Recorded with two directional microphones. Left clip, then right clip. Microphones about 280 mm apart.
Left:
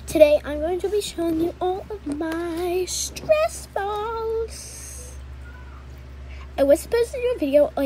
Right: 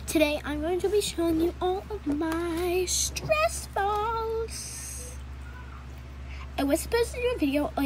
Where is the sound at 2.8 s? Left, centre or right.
Centre.